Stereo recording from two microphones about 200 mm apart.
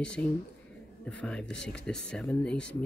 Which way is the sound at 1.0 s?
5° left (ahead or behind).